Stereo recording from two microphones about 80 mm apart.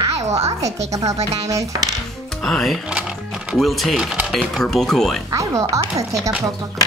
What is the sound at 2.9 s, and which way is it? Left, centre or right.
Music, centre.